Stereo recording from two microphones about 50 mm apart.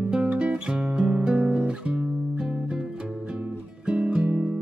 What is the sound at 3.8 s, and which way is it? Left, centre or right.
Music, right.